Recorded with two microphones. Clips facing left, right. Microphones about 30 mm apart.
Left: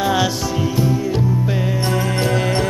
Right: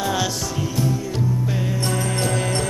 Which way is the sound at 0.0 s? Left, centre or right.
Centre.